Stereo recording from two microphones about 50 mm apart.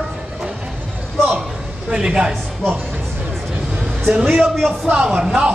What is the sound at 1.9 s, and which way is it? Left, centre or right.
Speech, centre.